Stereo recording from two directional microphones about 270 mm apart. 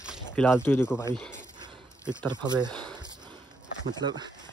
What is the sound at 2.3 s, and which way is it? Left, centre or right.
Speech, centre.